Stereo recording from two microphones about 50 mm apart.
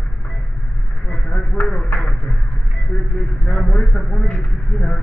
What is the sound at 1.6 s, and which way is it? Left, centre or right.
Speech, left.